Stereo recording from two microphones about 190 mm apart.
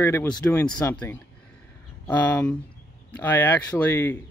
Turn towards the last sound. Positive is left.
turn(degrees=10)  # may be behind; listen again after turning